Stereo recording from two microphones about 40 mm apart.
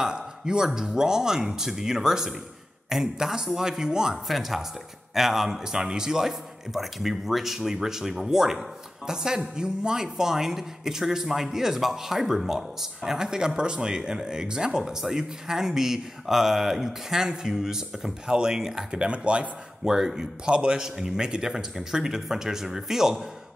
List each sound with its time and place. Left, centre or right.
0.0 s speech: centre
4.3 s speech: centre
18.9 s speech: right
19.8 s speech: centre
20.4 s speech: right